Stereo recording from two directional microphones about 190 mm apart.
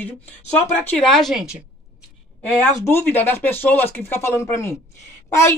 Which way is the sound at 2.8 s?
10° left (ahead or behind).